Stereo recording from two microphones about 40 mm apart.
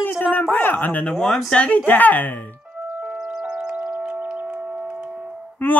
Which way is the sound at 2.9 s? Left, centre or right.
Right.